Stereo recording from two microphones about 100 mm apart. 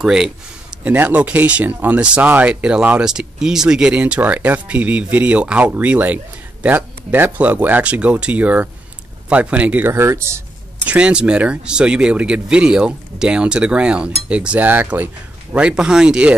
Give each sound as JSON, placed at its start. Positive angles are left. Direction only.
{"t": 0.0, "sound": "speech", "side_deg": -5}
{"t": 0.8, "sound": "speech", "side_deg": -15}
{"t": 10.9, "sound": "speech", "side_deg": -10}